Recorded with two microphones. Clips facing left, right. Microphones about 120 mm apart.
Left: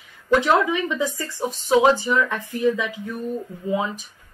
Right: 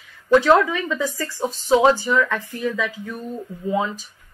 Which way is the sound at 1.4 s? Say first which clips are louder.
Right 1 dB; 20° right (ahead or behind).